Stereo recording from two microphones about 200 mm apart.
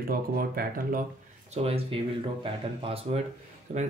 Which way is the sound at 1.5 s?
30° right (ahead or behind).